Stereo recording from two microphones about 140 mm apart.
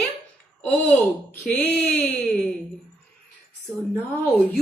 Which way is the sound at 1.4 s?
10° left (ahead or behind).